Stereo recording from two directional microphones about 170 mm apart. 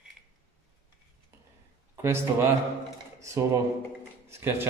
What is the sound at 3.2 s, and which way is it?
A man's voice, 15° right (ahead or behind).